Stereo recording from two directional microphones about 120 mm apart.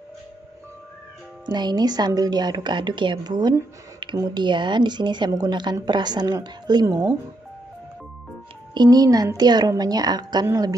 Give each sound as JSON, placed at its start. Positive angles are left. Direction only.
{"t": 1.4, "sound": "a woman's voice", "side_deg": -35}
{"t": 8.7, "sound": "a woman's voice", "side_deg": -35}
{"t": 10.4, "sound": "speech", "side_deg": -25}